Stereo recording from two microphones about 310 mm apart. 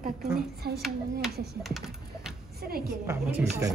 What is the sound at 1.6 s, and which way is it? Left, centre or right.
Computer keyboard, centre.